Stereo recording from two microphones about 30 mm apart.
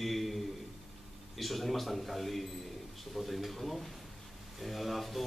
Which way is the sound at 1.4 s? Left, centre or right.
Centre.